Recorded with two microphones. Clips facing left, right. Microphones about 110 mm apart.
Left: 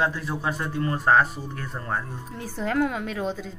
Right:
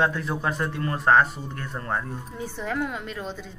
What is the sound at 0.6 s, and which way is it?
Speech, 20° left (ahead or behind).